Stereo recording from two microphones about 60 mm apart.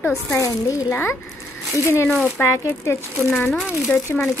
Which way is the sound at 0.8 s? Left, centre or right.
Left.